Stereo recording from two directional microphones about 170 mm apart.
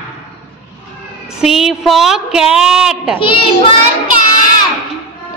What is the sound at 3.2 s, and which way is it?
Child singing, 30° left (ahead or behind).